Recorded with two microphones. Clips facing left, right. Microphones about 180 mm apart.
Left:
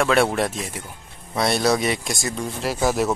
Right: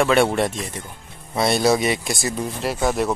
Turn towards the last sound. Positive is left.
turn(degrees=0)  # may be behind; listen again after turning